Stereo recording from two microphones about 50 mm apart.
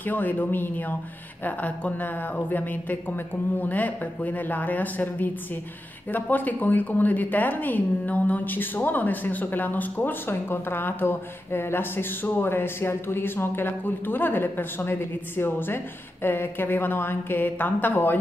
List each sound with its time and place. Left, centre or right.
0.0 s a woman's voice: left